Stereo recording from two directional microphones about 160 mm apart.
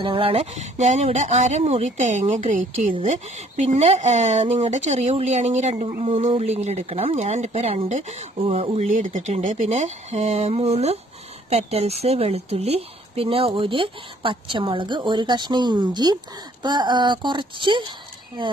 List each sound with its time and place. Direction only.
0.0 s a woman's voice: 35° right (ahead or behind)